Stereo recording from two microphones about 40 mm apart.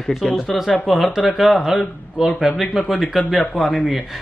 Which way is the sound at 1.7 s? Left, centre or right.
Centre.